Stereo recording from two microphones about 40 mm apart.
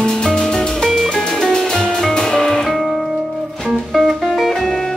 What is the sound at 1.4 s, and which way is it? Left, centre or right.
Music, centre.